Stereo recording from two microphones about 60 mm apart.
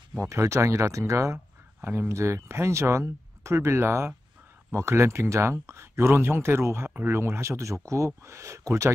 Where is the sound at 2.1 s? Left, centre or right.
Right.